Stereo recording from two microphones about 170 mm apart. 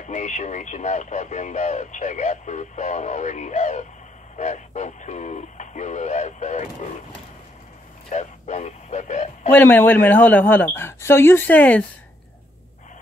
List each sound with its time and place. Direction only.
0.0 s speech: 45° left (ahead or behind)
8.1 s radio: 45° left (ahead or behind)
9.5 s speech: 10° left (ahead or behind)